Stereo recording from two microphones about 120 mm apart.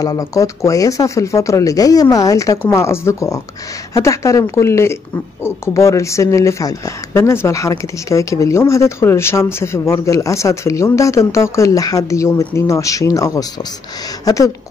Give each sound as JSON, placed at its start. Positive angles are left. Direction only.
{"t": 0.0, "sound": "speech", "side_deg": 30}